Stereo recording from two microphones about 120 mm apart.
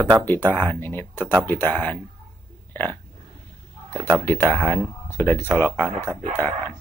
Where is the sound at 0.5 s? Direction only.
15° left (ahead or behind).